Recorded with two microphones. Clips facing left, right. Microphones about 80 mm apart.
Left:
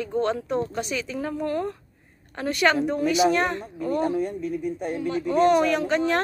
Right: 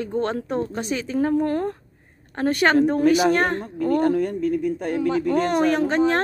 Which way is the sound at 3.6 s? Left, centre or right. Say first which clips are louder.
Right 5 dB; right.